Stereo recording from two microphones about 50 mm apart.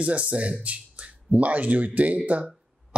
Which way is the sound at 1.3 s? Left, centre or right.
Right.